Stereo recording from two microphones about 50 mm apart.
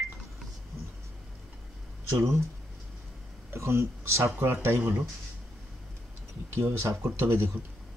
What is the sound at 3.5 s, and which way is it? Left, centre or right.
Speech, right.